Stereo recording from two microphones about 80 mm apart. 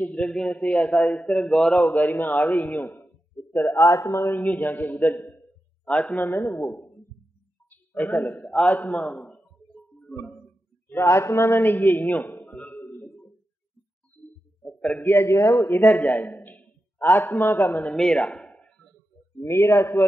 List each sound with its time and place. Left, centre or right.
0.0 s a man's voice: centre
1.9 s a man's voice: left
3.7 s a man's voice: left
4.4 s a man's voice: left
7.7 s a man's voice: centre
9.9 s music: centre
10.9 s a man's voice: left
12.8 s a sound: left
14.6 s a sound: centre
15.0 s a man's voice: left
17.9 s a sound: centre
19.4 s a man's voice: left